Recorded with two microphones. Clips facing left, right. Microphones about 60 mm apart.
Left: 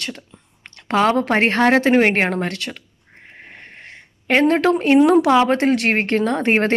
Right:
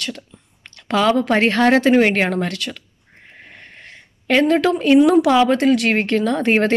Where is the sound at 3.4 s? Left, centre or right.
Left.